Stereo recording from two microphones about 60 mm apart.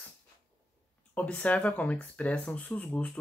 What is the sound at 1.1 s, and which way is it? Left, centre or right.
Speech, left.